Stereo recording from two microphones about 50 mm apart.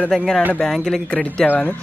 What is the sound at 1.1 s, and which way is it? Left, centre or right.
Speech, left.